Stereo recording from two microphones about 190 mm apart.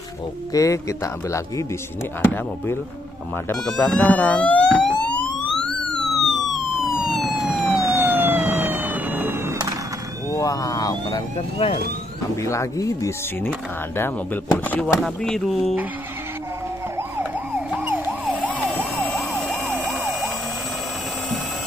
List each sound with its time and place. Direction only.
0.5 s speech: 15° left (ahead or behind)
5.1 s emergency vehicle: 5° left (ahead or behind)
10.3 s police car: 20° left (ahead or behind)
12.4 s speech: 15° left (ahead or behind); by 15.9 s 5° right (ahead or behind)
17.2 s emergency vehicle: 5° right (ahead or behind)
18.5 s emergency vehicle: 5° left (ahead or behind)